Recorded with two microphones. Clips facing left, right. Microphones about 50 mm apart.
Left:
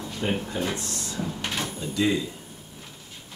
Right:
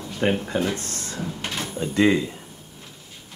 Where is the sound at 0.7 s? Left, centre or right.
Right.